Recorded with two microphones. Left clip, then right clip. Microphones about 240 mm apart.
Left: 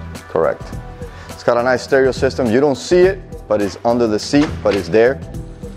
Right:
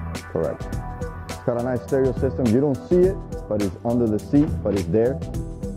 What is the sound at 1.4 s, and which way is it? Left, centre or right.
Speech, centre.